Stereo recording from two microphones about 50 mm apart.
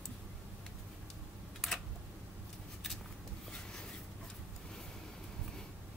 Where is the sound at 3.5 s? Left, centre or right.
Centre.